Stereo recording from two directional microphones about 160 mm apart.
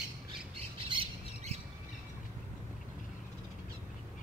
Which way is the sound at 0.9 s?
35° right (ahead or behind).